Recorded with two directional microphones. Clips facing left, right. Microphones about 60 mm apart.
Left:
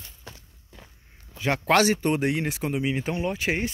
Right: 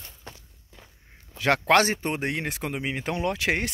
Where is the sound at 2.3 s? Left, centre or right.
Right.